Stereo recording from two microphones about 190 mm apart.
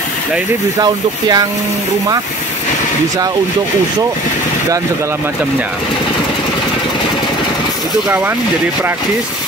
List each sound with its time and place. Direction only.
0.7 s speech: 20° right (ahead or behind)
8.1 s speech: 10° right (ahead or behind)